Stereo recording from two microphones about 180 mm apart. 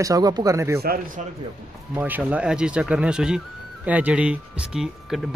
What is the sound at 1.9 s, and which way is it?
Speech, 10° right (ahead or behind).